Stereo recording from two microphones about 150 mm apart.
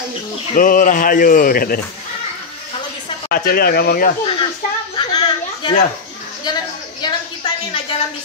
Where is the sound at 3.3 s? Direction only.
85° left.